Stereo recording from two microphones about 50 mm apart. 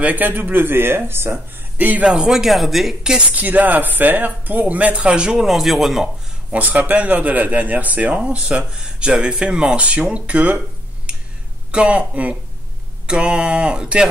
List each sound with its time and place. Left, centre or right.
0.0 s speech: right
1.8 s speech: right
2.0 s speech: centre
3.0 s speech: centre
3.3 s speech: right; by 5.5 s centre
5.5 s speech: centre
6.5 s speech: right; by 9.8 s centre
9.8 s a sound: right
11.7 s a sound: right
13.0 s a sound: centre